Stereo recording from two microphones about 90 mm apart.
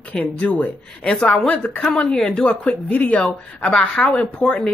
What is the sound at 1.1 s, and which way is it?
Speech, 5° left (ahead or behind).